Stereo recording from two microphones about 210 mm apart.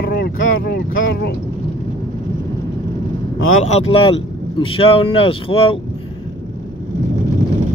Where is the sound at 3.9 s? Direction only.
25° left (ahead or behind).